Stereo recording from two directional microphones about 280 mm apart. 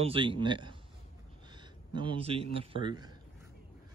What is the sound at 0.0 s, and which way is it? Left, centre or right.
Speech, centre.